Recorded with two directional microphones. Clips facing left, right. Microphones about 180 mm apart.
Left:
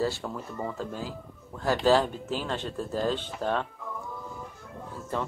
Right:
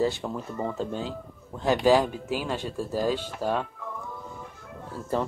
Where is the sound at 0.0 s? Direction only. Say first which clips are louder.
Right 3 dB; 15° right (ahead or behind).